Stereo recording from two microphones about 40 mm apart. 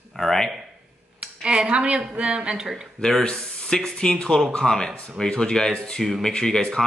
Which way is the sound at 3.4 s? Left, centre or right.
Centre.